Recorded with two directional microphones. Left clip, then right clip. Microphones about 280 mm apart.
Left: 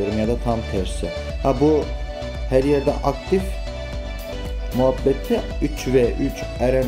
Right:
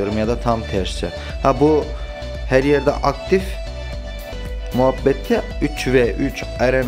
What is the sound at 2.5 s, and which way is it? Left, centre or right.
Speech, centre.